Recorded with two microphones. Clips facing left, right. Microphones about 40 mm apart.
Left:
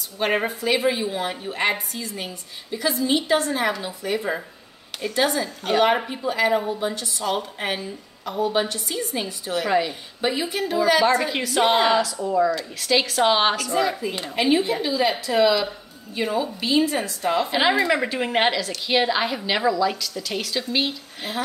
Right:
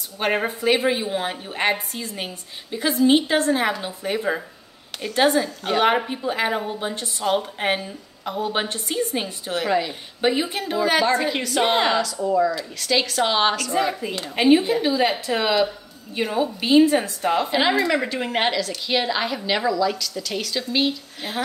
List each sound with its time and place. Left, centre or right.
0.6 s a woman's voice: right
0.8 s a woman's voice: centre
2.0 s a woman's voice: right
6.5 s a woman's voice: centre
7.0 s a woman's voice: right
8.4 s a woman's voice: right
9.7 s a woman's voice: centre
10.2 s a woman's voice: right
11.2 s a woman's voice: centre
13.7 s a woman's voice: right
16.2 s a woman's voice: centre
16.6 s a woman's voice: right
17.5 s a woman's voice: centre